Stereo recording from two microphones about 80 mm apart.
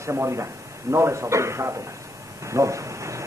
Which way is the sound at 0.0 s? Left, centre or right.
Right.